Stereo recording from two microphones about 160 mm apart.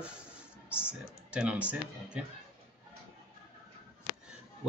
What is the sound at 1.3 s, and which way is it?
Speech, 5° right (ahead or behind).